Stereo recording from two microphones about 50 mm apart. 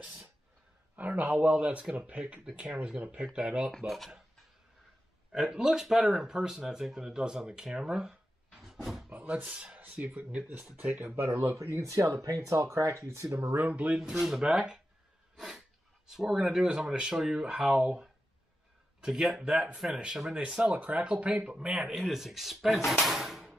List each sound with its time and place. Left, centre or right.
0.9 s speech: right
3.7 s speech: centre
5.3 s speech: centre
8.8 s a sound: centre
9.3 s speech: right
11.2 s speech: right
13.4 s speech: right
13.9 s speech: centre
15.3 s dog: centre
16.1 s speech: centre
21.5 s speech: centre